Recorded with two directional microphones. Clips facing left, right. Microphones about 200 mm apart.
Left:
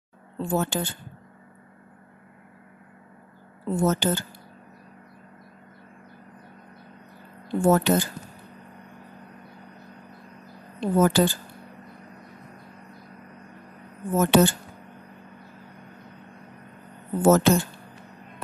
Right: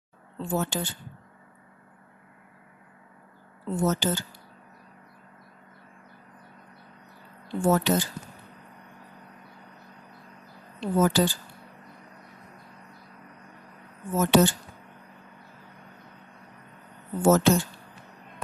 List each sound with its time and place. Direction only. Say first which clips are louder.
0.4 s speech: left 3 dB; 55° left (ahead or behind)
3.6 s speech: left 3 dB; 55° left (ahead or behind)
7.4 s speech: left 3 dB; 55° left (ahead or behind)
10.8 s speech: left 3 dB; 55° left (ahead or behind)
14.1 s speech: left 2 dB; 55° left (ahead or behind)
17.2 s speech: left 2 dB; 55° left (ahead or behind)